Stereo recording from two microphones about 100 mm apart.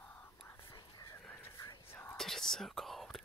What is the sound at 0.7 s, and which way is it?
Whispering, 45° left (ahead or behind).